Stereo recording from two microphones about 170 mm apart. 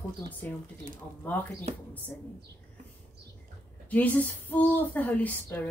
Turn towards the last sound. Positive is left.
turn(degrees=10)  # may be behind; listen again after turning